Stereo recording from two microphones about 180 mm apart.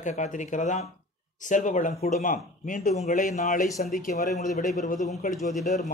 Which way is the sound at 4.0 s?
55° left (ahead or behind).